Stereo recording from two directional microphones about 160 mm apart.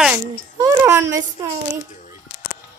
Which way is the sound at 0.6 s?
20° right (ahead or behind).